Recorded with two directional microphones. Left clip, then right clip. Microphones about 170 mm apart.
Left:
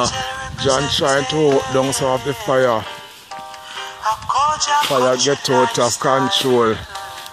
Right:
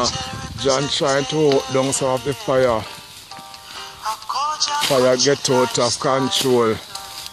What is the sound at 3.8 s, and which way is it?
Music, 40° left (ahead or behind).